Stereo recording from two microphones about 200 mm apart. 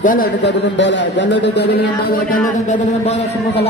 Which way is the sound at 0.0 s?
45° left (ahead or behind).